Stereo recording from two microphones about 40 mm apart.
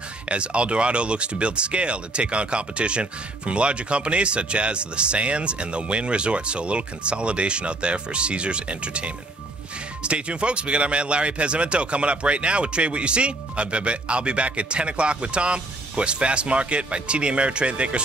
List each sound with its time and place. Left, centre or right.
0.3 s speech: right